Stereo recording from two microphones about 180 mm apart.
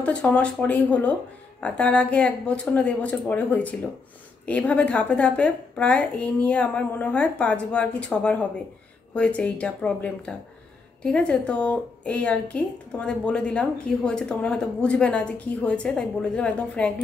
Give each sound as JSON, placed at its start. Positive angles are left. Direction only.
{"t": 0.0, "sound": "a woman's voice", "side_deg": 5}